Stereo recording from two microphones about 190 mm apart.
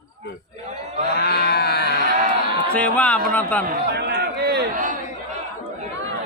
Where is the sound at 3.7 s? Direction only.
60° right (ahead or behind).